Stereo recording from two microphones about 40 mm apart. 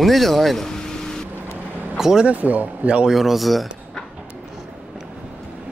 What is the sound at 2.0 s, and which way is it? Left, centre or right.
Speech, centre.